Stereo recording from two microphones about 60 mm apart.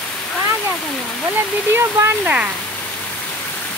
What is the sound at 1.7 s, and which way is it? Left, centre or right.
Speech, right.